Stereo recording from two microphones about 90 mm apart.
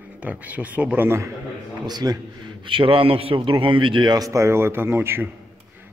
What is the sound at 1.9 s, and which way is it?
A man's voice, 50° right (ahead or behind).